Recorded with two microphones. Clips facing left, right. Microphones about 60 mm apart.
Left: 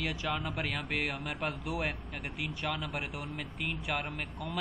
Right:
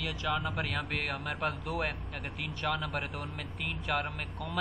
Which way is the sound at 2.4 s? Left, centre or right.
Centre.